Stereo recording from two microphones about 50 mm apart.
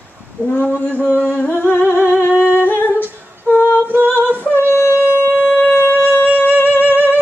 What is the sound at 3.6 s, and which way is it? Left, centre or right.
Female singing, right.